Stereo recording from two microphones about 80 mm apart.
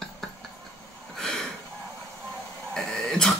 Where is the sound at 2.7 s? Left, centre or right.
Centre.